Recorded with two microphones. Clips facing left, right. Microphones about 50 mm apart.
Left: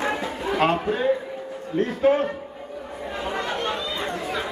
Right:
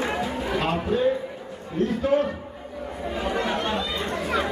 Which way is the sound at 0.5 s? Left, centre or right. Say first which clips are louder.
Left 3 dB; left.